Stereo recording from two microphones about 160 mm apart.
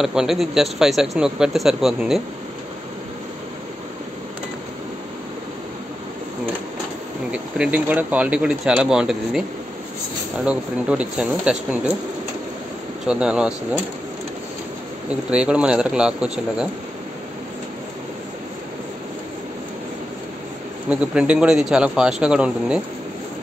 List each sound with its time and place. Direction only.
0.0 s a man's voice: 5° right (ahead or behind)
7.5 s speech: 5° right (ahead or behind)
10.4 s speech: 5° right (ahead or behind)
13.0 s a man's voice: 5° right (ahead or behind)
15.0 s a man's voice: 5° right (ahead or behind)
20.9 s a man's voice: 5° right (ahead or behind)